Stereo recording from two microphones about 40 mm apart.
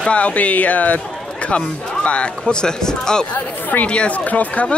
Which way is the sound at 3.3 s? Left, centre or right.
Left.